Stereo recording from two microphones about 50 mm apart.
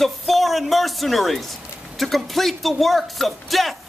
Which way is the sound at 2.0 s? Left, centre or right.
Centre.